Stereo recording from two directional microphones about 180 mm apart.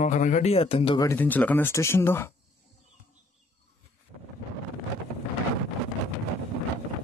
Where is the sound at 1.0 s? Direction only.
10° left (ahead or behind).